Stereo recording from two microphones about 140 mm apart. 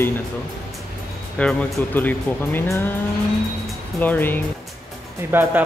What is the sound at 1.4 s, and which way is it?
Speech, 10° left (ahead or behind).